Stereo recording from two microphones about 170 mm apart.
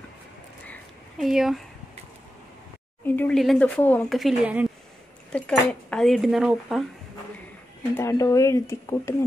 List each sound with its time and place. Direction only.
0.7 s a sound: centre (ahead or behind)
3.2 s speech: 5° left (ahead or behind)
4.2 s speech: 5° right (ahead or behind)
5.3 s speech: 5° left (ahead or behind)
7.9 s speech: 15° left (ahead or behind)